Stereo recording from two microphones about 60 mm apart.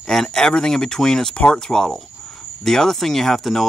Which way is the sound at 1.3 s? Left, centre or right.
Centre.